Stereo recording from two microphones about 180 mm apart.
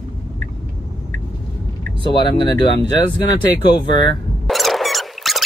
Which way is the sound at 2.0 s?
25° left (ahead or behind).